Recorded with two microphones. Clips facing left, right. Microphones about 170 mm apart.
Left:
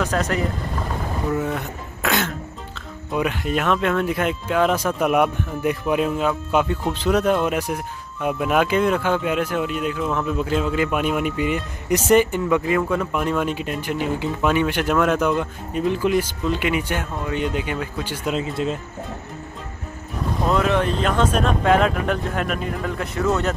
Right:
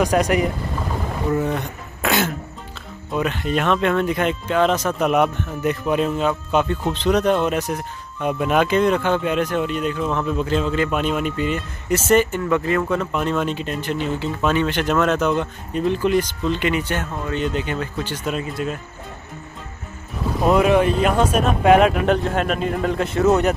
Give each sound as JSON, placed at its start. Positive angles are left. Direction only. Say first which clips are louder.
{"t": 0.0, "sound": "speech", "louder": "right 4 dB", "side_deg": -15}
{"t": 1.3, "sound": "speech", "louder": "right 4 dB", "side_deg": 0}
{"t": 3.1, "sound": "speech", "louder": "even", "side_deg": 10}
{"t": 20.4, "sound": "speech", "louder": "right 5 dB", "side_deg": -10}